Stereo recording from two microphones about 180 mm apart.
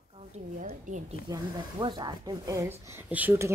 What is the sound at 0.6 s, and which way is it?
Speech, 45° right (ahead or behind).